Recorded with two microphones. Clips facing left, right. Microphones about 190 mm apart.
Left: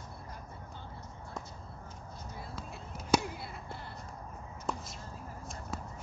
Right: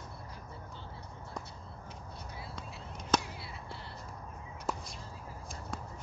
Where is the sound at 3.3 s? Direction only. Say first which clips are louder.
Left 2 dB; 50° left (ahead or behind).